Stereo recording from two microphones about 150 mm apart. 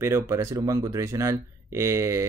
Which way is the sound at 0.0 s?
20° right (ahead or behind).